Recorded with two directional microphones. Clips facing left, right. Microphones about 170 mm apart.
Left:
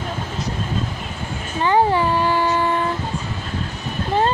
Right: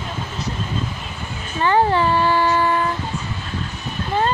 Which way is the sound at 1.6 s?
15° left (ahead or behind).